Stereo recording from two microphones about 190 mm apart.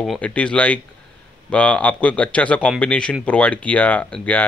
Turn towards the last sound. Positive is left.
turn(degrees=5)  # may be behind; listen again after turning